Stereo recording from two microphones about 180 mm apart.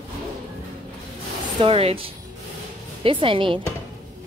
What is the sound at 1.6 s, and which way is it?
Speech, 30° right (ahead or behind).